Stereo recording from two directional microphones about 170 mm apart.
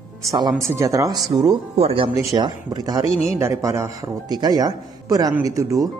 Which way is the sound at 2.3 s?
25° right (ahead or behind).